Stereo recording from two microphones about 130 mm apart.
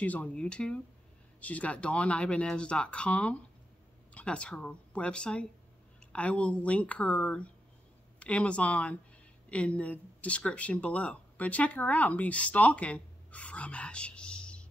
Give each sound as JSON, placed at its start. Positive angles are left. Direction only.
{"t": 0.0, "sound": "speech", "side_deg": 10}